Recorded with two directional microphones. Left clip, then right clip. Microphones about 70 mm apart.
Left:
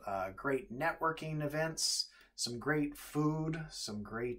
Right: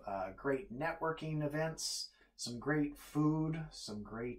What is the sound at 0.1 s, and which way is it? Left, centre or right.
Speech, left.